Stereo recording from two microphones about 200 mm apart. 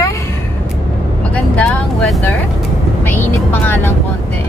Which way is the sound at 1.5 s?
5° left (ahead or behind).